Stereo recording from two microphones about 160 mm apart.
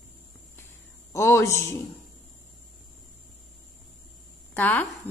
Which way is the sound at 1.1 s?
20° left (ahead or behind).